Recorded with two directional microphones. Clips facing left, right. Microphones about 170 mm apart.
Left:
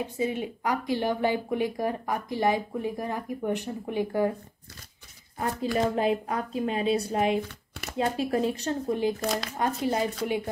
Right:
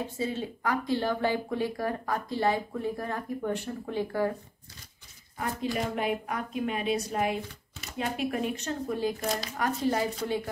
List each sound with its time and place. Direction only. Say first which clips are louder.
0.0 s speech: left 3 dB; 15° left (ahead or behind)
5.4 s speech: left 4 dB; 30° left (ahead or behind)
9.6 s a woman's voice: left 1 dB; 20° left (ahead or behind)